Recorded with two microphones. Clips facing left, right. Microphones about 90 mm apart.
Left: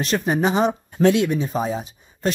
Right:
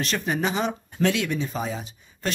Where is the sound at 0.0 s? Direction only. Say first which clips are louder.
Left 5 dB; 35° left (ahead or behind).